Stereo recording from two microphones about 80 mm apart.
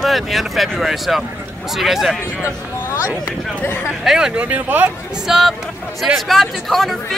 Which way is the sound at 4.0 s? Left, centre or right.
Centre.